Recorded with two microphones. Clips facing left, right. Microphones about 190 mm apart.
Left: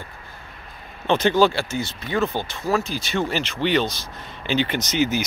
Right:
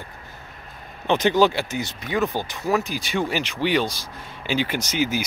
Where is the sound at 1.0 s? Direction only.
15° right (ahead or behind).